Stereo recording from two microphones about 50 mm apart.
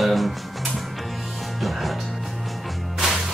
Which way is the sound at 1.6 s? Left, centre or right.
Centre.